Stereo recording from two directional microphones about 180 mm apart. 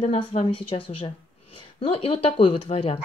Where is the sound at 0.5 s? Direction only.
30° left (ahead or behind).